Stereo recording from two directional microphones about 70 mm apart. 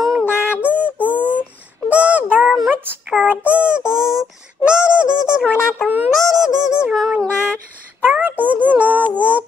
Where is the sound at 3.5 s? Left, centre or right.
Centre.